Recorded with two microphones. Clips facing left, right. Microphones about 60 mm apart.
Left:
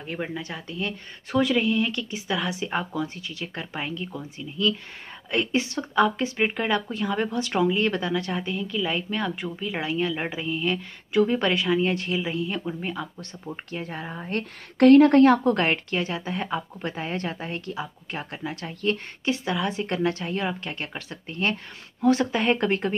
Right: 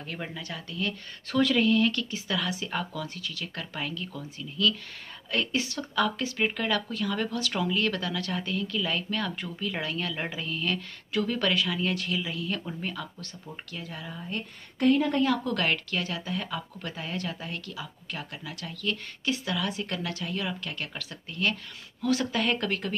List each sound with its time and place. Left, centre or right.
0.0 s speech: centre
13.5 s speech: left
14.3 s speech: left
15.4 s speech: left